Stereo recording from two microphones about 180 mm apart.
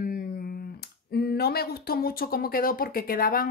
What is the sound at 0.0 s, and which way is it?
A woman's voice, 55° left (ahead or behind).